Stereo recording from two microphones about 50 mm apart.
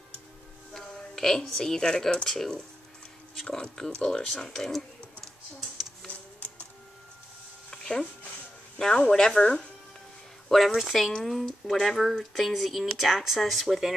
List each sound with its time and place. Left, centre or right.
0.9 s a woman's voice: centre
7.7 s a sound: centre
8.7 s speech: centre
10.5 s speech: centre